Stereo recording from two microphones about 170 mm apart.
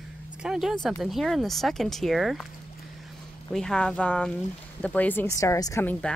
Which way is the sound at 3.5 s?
5° left (ahead or behind).